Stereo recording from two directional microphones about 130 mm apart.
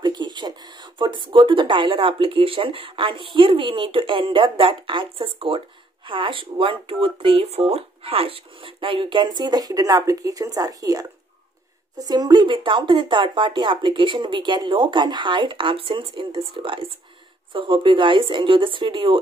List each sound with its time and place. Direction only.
0.0 s speech: 35° right (ahead or behind)